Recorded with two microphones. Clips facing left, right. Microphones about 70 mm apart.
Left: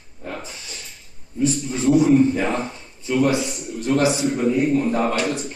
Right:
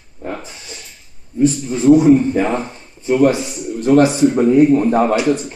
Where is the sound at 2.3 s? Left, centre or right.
Right.